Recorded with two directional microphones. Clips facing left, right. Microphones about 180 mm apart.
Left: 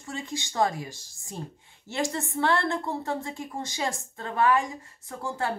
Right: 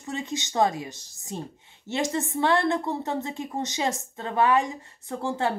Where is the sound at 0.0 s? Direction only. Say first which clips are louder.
Right 3 dB; 20° right (ahead or behind).